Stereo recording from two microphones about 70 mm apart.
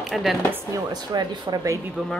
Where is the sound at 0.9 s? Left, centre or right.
Right.